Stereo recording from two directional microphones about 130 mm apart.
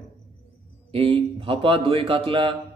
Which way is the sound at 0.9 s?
45° right (ahead or behind).